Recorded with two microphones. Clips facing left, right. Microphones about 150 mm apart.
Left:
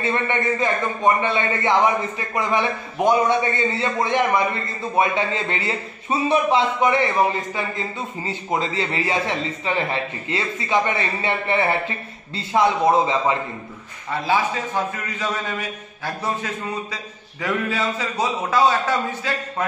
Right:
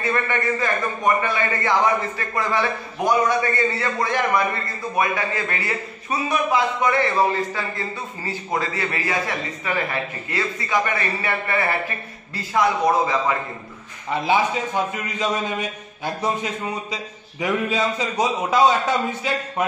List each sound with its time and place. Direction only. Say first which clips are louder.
0.0 s a man's voice: left 1 dB; 20° left (ahead or behind)
14.1 s a man's voice: right 1 dB; 15° right (ahead or behind)